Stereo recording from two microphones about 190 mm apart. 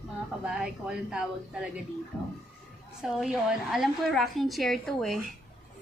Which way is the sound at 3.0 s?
5° right (ahead or behind).